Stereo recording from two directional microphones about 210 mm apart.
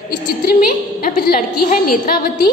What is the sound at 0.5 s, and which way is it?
A woman's voice, 45° left (ahead or behind).